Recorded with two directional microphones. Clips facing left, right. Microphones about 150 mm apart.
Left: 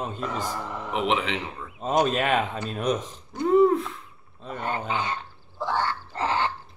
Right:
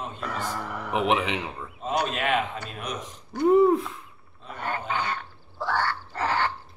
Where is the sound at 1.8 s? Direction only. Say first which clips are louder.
Left 5 dB; 40° left (ahead or behind).